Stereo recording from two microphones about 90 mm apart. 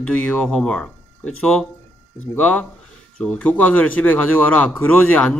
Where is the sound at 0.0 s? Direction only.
15° left (ahead or behind).